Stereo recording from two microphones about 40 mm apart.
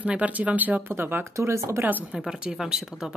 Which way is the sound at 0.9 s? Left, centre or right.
Right.